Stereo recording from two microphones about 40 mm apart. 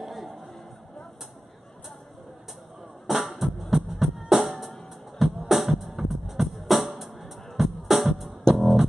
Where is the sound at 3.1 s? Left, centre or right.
Centre.